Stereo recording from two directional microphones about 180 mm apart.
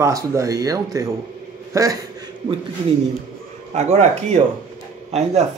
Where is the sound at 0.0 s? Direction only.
15° right (ahead or behind).